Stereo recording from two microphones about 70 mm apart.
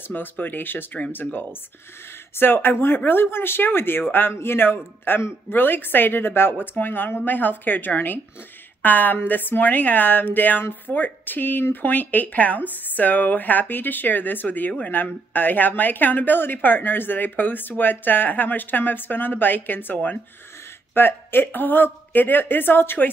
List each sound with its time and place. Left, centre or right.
0.0 s speech: left